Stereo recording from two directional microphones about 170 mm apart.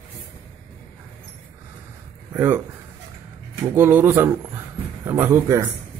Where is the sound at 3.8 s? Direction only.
15° right (ahead or behind).